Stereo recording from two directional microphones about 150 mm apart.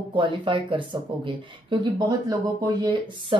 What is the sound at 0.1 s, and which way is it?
Speech, 35° right (ahead or behind).